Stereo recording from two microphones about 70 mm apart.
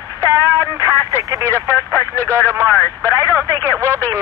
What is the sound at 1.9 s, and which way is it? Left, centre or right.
Speech, left.